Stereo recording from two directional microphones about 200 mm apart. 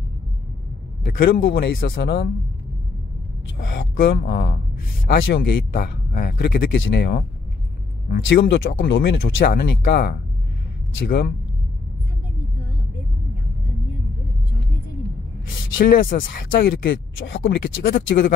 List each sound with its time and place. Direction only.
1.1 s speech: 50° left (ahead or behind)
3.5 s speech: 50° left (ahead or behind)
15.8 s speech: 45° left (ahead or behind)